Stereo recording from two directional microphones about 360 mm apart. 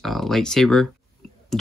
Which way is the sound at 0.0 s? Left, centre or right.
Centre.